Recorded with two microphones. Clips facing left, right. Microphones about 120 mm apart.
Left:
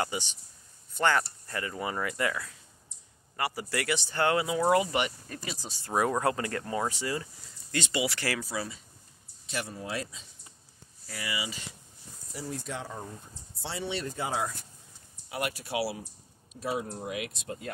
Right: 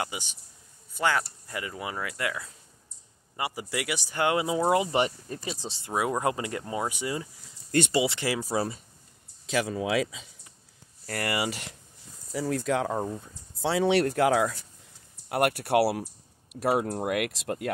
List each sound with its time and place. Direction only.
0.0 s speech: 5° right (ahead or behind)
3.3 s speech: 15° right (ahead or behind)
8.4 s speech: 40° right (ahead or behind)
9.5 s speech: 90° right
11.1 s speech: 65° right (ahead or behind)
12.3 s speech: 90° right
15.2 s speech: 60° right (ahead or behind); by 17.6 s 80° right